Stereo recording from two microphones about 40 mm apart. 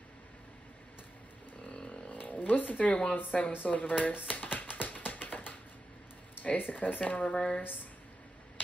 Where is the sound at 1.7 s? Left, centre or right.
Left.